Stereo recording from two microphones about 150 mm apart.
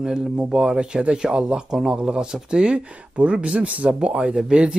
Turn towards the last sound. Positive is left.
turn(degrees=-5)  # may be behind; listen again after turning